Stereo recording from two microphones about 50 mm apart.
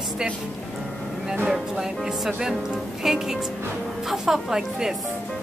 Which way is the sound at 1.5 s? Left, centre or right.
Centre.